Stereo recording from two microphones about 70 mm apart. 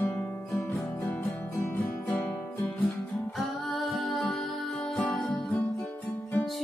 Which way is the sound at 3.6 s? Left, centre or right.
Centre.